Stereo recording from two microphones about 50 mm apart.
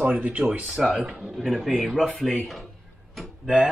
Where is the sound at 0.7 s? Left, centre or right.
Centre.